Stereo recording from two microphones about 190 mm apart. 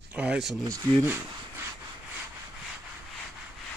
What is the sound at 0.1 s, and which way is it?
Speech, 5° right (ahead or behind).